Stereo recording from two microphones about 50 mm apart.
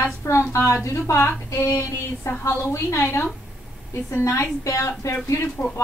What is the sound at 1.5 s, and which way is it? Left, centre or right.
A woman's voice, left.